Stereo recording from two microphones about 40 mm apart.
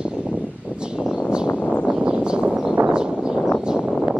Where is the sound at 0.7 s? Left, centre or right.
Right.